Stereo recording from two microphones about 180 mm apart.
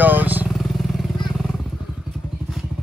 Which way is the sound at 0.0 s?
10° right (ahead or behind).